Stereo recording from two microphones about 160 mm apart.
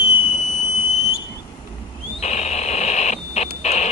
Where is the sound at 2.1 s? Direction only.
45° left (ahead or behind).